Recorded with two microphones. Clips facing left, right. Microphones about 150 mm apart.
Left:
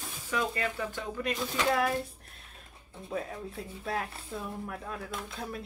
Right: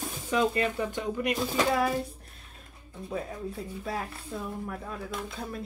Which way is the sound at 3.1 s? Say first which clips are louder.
Right 2 dB; centre (ahead or behind).